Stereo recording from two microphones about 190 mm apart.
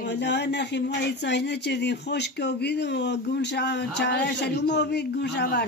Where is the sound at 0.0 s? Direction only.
65° left (ahead or behind).